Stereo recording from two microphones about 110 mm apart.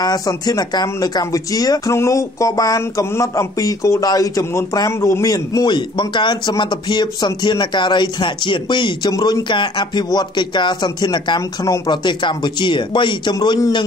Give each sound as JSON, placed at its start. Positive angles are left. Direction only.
{"t": 0.0, "sound": "speech", "side_deg": 35}